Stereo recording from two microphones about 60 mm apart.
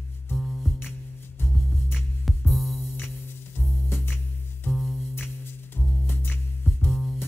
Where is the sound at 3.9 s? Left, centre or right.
Left.